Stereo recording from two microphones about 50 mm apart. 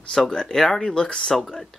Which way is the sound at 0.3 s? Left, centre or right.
Centre.